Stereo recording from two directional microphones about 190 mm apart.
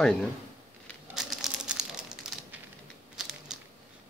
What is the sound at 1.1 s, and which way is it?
Crumpling, 5° right (ahead or behind).